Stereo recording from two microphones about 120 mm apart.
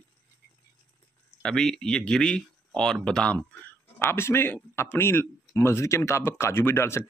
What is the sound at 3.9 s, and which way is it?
Speech, 20° left (ahead or behind).